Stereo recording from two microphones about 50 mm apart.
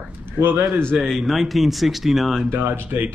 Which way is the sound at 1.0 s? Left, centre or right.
Centre.